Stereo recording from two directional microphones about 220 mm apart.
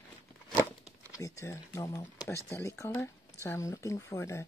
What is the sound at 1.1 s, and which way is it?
Speech, 15° left (ahead or behind).